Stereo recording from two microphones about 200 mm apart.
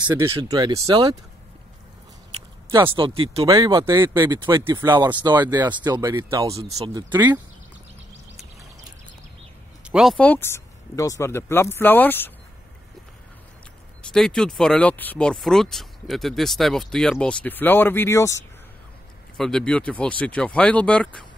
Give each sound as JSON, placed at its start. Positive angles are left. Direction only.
{"t": 0.0, "sound": "speech", "side_deg": -15}
{"t": 2.7, "sound": "speech", "side_deg": -25}
{"t": 9.8, "sound": "speech", "side_deg": 0}
{"t": 14.1, "sound": "speech", "side_deg": 5}
{"t": 19.3, "sound": "speech", "side_deg": 5}